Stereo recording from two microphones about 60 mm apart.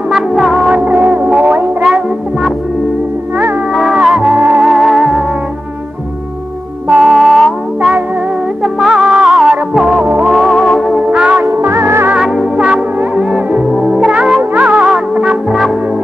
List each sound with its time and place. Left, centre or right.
0.1 s music: centre
0.7 s music: centre
3.7 s music: centre
6.9 s music: centre
8.7 s music: centre
11.1 s music: centre
11.5 s music: right
12.2 s music: centre
14.5 s music: right